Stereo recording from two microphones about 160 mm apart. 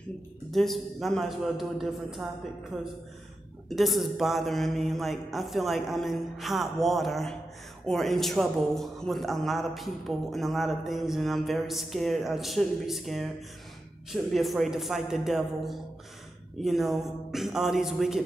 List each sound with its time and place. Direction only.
0.5 s speech: centre (ahead or behind)